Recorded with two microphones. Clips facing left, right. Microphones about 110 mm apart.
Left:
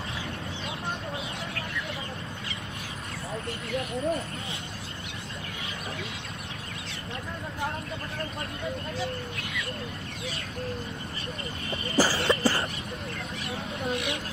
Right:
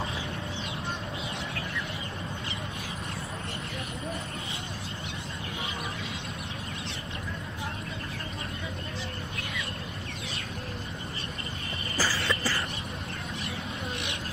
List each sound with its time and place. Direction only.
12.0 s cough: 30° left (ahead or behind)